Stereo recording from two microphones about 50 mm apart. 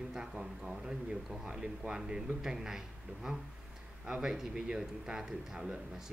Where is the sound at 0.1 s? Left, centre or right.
Centre.